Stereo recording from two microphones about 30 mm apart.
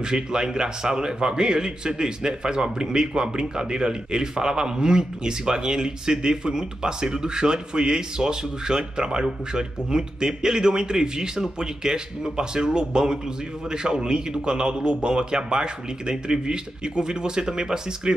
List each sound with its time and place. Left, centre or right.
0.0 s a man's voice: right